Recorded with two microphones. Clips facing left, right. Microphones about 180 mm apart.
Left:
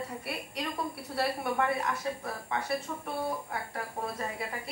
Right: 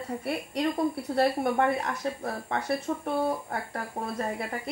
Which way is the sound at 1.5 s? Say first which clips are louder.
Right 3 dB; 40° right (ahead or behind).